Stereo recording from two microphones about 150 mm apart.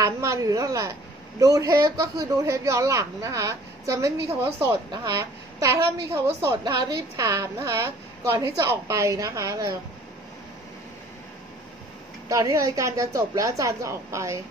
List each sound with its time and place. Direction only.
0.0 s a woman's voice: 20° right (ahead or behind)
12.3 s speech: 20° right (ahead or behind)